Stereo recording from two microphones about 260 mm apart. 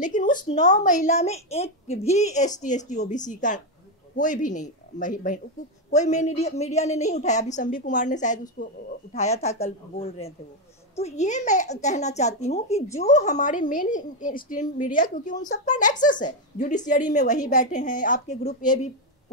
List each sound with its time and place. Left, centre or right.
0.0 s a woman's voice: left
9.1 s a woman's voice: left